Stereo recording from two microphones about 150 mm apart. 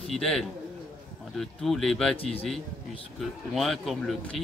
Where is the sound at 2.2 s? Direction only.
40° left (ahead or behind).